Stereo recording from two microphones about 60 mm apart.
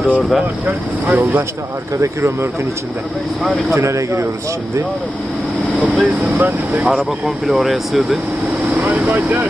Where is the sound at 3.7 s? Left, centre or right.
Right.